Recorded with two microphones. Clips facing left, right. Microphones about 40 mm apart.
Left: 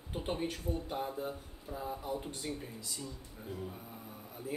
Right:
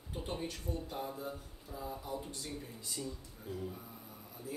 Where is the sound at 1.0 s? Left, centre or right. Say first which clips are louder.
Left 3 dB; left.